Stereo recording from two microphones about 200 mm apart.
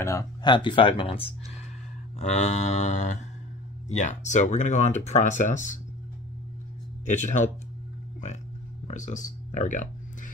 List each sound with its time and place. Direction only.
0.0 s speech: 15° left (ahead or behind); by 5.8 s 40° left (ahead or behind)
7.1 s speech: 35° left (ahead or behind)
8.8 s a sound: 35° left (ahead or behind)